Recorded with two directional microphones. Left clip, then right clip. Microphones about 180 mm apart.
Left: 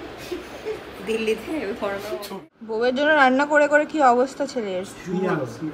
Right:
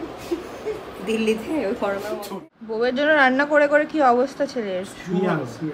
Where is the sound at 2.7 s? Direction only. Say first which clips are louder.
Even; 10° right (ahead or behind).